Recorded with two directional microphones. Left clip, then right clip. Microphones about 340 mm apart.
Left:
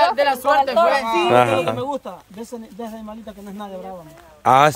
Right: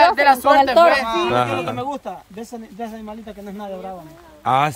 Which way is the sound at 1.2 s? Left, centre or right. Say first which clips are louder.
Left 4 dB; centre.